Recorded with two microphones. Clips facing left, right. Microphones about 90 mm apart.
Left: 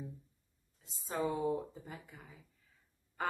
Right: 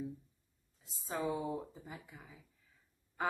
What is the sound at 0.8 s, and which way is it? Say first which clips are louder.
Speech: left 1 dB; centre (ahead or behind).